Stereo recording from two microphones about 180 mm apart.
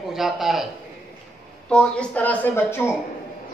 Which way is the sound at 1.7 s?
5° left (ahead or behind).